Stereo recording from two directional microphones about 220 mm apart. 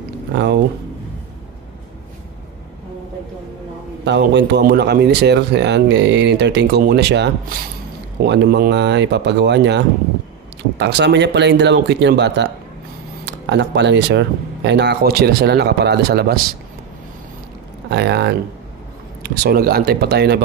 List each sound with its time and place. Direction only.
4.0 s a man's voice: 55° right (ahead or behind)
17.8 s a man's voice: 50° right (ahead or behind)